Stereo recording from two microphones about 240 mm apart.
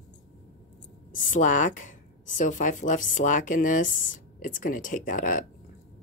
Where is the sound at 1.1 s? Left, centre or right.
Left.